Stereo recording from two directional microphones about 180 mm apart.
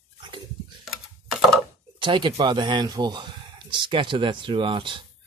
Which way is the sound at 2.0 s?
25° right (ahead or behind).